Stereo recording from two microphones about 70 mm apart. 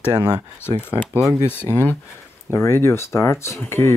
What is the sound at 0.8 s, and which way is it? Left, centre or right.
Speech, left.